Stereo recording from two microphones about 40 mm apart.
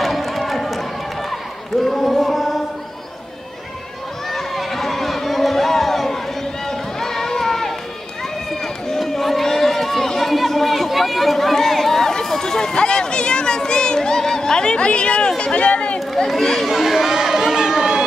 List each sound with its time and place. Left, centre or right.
0.0 s run: centre
1.8 s a sound: centre
4.3 s run: centre
6.7 s music: centre
8.5 s run: centre
15.6 s run: left
16.6 s run: centre